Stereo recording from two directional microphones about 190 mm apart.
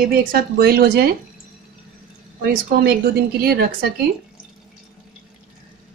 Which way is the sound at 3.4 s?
55° right (ahead or behind).